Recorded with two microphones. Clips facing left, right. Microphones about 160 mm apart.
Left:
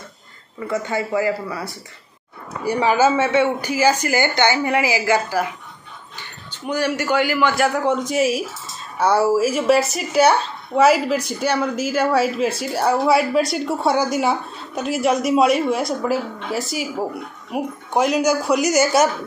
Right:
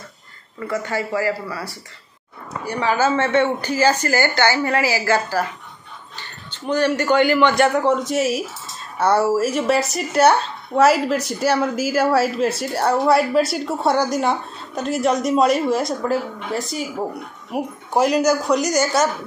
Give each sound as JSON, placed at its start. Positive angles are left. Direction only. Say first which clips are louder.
{"t": 0.6, "sound": "speech", "louder": "left 1 dB", "side_deg": 15}